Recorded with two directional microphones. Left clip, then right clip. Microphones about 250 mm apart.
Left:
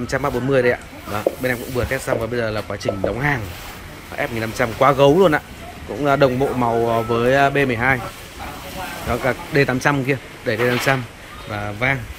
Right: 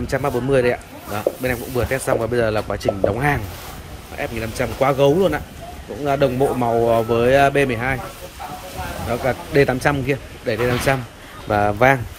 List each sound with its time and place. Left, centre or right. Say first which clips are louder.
0.0 s speech: even; centre
9.1 s speech: right 1 dB; centre
11.5 s speech: right 7 dB; centre